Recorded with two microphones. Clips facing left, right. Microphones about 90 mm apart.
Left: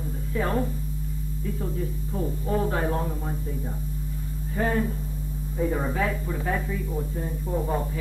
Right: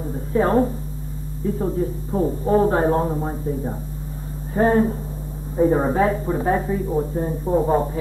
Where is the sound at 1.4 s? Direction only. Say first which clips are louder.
Right 9 dB; 35° right (ahead or behind).